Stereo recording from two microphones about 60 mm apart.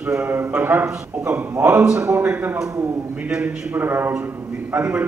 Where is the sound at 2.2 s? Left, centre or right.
Right.